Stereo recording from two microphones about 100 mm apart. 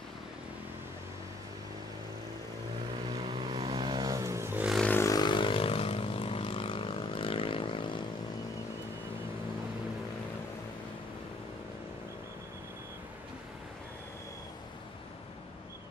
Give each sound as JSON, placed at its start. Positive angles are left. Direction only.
{"t": 3.3, "sound": "vehicle", "side_deg": -45}
{"t": 5.0, "sound": "vehicle", "side_deg": 40}
{"t": 5.3, "sound": "vehicle", "side_deg": 60}